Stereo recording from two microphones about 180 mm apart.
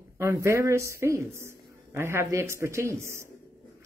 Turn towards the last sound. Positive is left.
turn(degrees=-15)  # may be behind; listen again after turning